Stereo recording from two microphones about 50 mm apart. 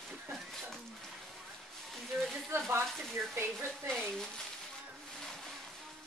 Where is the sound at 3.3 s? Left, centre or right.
Right.